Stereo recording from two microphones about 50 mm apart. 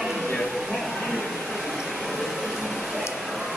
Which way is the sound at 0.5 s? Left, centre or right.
Centre.